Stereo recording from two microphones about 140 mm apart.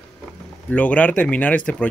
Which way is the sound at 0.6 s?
10° left (ahead or behind).